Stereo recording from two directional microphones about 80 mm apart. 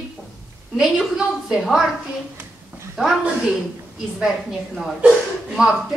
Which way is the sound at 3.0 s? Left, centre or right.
Centre.